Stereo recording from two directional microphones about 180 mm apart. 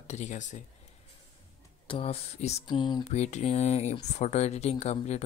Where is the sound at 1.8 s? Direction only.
30° left (ahead or behind).